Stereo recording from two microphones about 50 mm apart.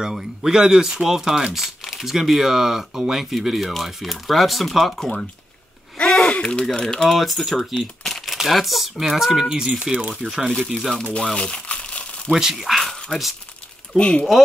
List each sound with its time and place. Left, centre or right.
0.0 s speech: centre
6.2 s speech: left
7.1 s speech: centre
7.7 s crumpling: centre
8.4 s speech: centre
10.6 s speech: centre
11.7 s crumpling: left
12.3 s speech: centre
13.9 s speech: left